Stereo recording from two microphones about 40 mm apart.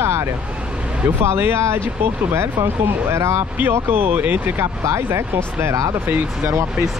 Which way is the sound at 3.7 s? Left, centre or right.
Right.